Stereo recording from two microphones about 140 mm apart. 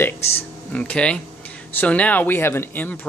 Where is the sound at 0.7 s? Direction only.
5° left (ahead or behind).